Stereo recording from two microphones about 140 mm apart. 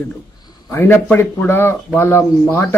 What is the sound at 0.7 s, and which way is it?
Speech, 15° left (ahead or behind).